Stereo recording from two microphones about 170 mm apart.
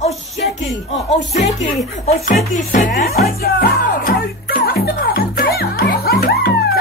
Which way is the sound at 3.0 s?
65° left (ahead or behind).